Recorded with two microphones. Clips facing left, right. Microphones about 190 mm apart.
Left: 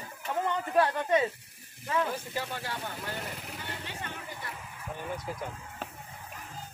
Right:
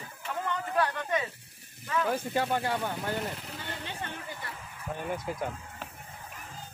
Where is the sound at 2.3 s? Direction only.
55° right (ahead or behind).